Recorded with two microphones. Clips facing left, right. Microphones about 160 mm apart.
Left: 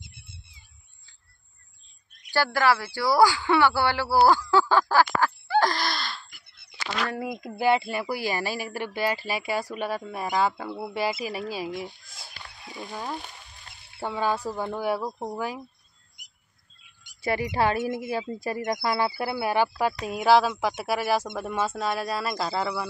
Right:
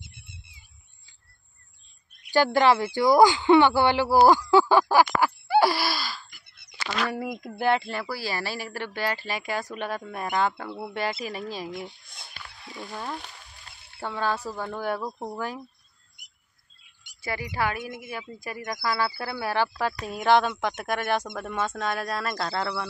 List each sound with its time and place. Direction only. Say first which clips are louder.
2.3 s speech: right 3 dB; 20° right (ahead or behind); by 15.6 s 10° left (ahead or behind)
17.2 s a woman's voice: left 4 dB; 25° left (ahead or behind); by 22.8 s 5° left (ahead or behind)